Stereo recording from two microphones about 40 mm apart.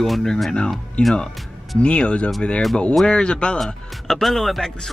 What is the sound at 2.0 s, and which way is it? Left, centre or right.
Speech, left.